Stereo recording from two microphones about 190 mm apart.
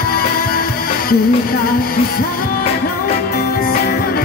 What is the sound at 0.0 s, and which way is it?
Music, 50° left (ahead or behind).